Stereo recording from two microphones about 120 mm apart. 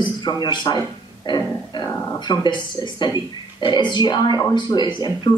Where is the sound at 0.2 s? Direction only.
40° left (ahead or behind).